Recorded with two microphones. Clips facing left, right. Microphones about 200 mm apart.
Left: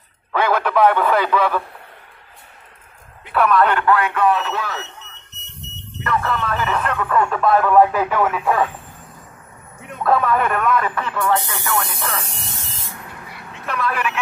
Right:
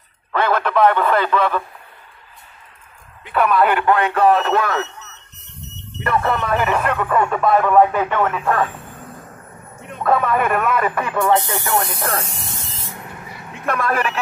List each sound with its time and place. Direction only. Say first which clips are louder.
0.3 s speech: even; 10° left (ahead or behind)
3.3 s a man's voice: even; centre (ahead or behind)
3.8 s a sound: right 1 dB; 20° right (ahead or behind)
4.1 s speech: right 4 dB; 40° right (ahead or behind); by 4.8 s 55° right (ahead or behind)
5.9 s speech: right 2 dB; 25° right (ahead or behind); by 8.6 s 5° left (ahead or behind)
10.0 s speech: even; 5° right (ahead or behind)
11.1 s a sound: right 4 dB; 25° right (ahead or behind)
12.0 s speech: right 4 dB; 50° right (ahead or behind)
13.7 s speech: right 3 dB; 45° right (ahead or behind)